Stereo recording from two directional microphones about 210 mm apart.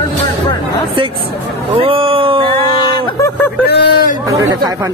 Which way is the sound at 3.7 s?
45° left (ahead or behind).